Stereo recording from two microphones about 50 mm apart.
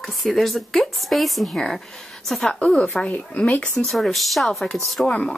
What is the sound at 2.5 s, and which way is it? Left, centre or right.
Speech, left.